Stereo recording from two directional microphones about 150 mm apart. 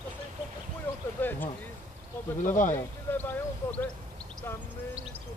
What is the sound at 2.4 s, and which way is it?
Speech, 55° left (ahead or behind).